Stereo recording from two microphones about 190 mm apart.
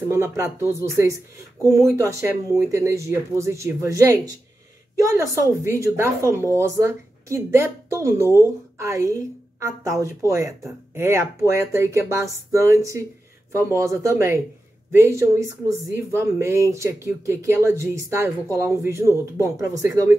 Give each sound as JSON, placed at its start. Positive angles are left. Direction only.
{"t": 1.7, "sound": "a woman's voice", "side_deg": -15}